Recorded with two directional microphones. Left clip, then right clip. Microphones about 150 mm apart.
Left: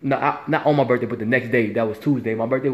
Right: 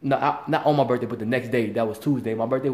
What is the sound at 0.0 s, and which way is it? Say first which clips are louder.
A man's voice: left 1 dB; 15° right (ahead or behind).